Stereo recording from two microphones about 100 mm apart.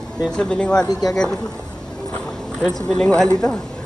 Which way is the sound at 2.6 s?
5° left (ahead or behind).